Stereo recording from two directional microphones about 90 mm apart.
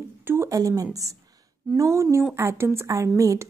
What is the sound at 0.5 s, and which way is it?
A woman's voice, 40° right (ahead or behind).